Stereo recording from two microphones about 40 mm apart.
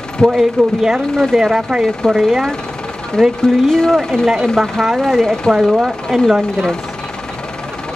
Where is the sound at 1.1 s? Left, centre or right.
Centre.